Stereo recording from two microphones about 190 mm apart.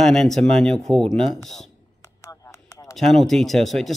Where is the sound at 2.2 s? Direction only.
15° left (ahead or behind).